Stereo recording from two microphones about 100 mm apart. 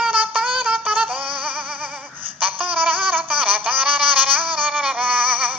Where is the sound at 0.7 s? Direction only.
15° right (ahead or behind).